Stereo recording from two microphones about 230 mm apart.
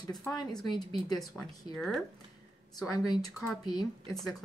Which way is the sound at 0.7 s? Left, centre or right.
Centre.